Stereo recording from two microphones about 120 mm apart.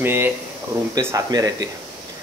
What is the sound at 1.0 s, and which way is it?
Speech, 30° right (ahead or behind).